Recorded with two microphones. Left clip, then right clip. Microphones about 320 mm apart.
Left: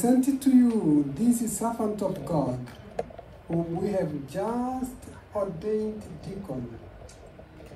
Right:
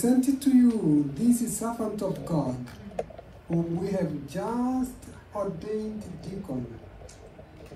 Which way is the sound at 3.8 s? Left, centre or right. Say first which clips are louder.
Left 2 dB; left.